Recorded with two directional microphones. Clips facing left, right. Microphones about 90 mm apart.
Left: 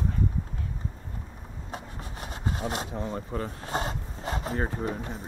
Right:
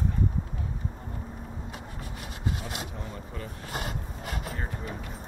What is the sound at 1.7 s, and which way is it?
Rub, 35° left (ahead or behind).